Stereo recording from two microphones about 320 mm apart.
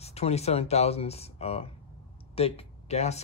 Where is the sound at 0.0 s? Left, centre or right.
Centre.